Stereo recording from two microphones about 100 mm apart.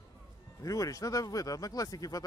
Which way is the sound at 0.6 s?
35° left (ahead or behind).